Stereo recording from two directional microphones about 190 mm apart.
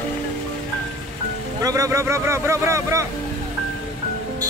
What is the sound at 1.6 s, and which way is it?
Speech, 15° right (ahead or behind).